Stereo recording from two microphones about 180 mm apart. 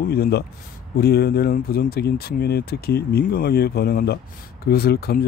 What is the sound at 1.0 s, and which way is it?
Speech, 60° left (ahead or behind).